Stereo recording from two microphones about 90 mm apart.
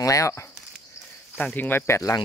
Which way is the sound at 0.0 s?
35° left (ahead or behind).